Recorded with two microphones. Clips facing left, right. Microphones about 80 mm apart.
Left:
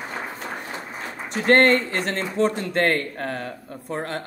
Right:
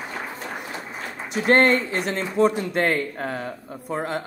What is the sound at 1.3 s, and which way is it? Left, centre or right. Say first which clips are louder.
Speech: left 1 dB; left.